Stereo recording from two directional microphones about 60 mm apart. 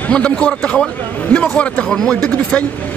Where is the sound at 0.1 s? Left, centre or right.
Centre.